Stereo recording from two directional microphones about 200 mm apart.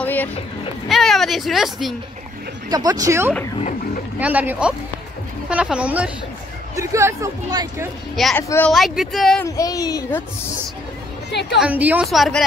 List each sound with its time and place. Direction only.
0.0 s a sound: 10° left (ahead or behind)
0.8 s speech: centre (ahead or behind)
2.7 s speech: 20° right (ahead or behind)
8.2 s speech: centre (ahead or behind)
8.7 s speech: centre (ahead or behind)
9.6 s speech: 20° left (ahead or behind)
11.3 s a woman's voice: 60° left (ahead or behind)
11.6 s speech: 10° right (ahead or behind)